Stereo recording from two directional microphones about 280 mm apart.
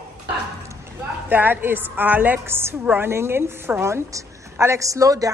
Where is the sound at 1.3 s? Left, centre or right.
Centre.